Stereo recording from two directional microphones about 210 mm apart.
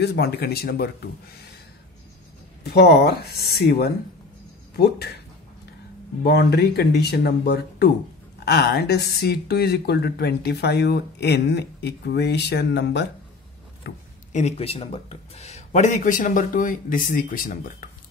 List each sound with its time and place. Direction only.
0.0 s speech: 50° left (ahead or behind)
2.6 s speech: 50° left (ahead or behind)
6.2 s speech: 50° left (ahead or behind)
14.3 s a man's voice: 30° left (ahead or behind)